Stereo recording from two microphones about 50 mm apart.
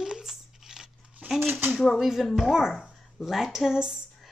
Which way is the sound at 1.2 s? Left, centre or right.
Right.